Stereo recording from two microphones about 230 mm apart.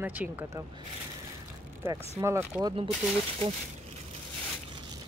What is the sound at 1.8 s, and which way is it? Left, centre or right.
Speech, centre.